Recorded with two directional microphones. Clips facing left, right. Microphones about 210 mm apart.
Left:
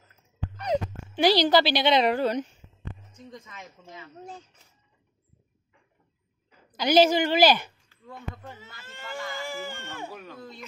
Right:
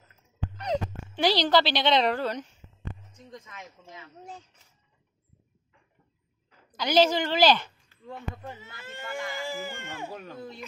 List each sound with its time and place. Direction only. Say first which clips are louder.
0.6 s speech: left 2 dB; 10° left (ahead or behind)
3.3 s speech: right 3 dB; 5° right (ahead or behind)
6.8 s speech: left 3 dB; 10° left (ahead or behind)
8.4 s speech: right 3 dB; 15° right (ahead or behind)